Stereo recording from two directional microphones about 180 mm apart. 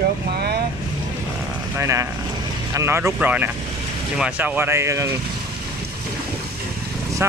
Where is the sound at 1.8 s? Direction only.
15° right (ahead or behind).